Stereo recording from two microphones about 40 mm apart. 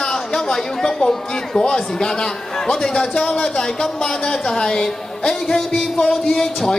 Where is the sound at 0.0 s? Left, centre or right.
Centre.